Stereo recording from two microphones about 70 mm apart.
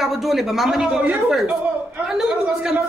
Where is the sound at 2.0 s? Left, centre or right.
Centre.